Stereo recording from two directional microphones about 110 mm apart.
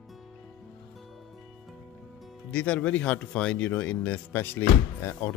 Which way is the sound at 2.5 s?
10° left (ahead or behind).